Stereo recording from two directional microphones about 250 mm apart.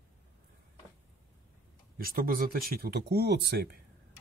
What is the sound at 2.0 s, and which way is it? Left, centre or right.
Speech, right.